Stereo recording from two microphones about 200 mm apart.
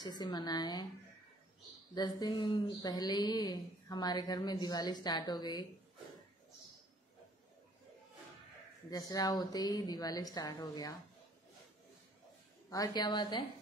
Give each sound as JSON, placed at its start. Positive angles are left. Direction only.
{"t": 0.0, "sound": "speech", "side_deg": 20}
{"t": 2.0, "sound": "speech", "side_deg": 20}
{"t": 8.9, "sound": "speech", "side_deg": 20}
{"t": 12.6, "sound": "speech", "side_deg": 20}